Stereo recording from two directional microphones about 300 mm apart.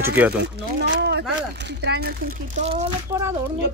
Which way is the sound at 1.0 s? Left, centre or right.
Right.